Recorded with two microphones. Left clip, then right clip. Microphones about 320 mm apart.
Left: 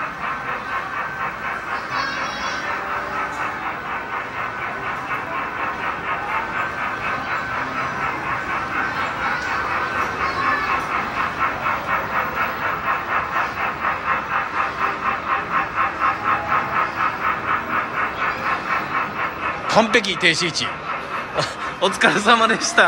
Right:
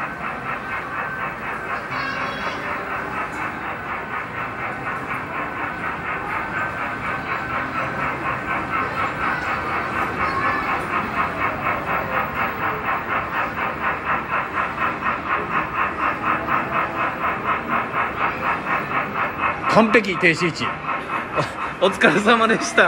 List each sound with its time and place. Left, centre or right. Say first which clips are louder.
19.7 s speech: even; centre